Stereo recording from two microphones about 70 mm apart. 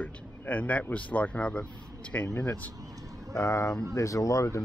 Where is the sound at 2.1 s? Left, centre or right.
Left.